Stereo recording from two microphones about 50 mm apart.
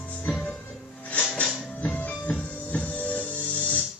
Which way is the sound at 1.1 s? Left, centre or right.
Left.